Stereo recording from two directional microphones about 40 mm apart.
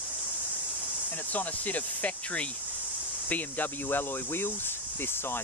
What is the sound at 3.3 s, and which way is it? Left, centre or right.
Speech, left.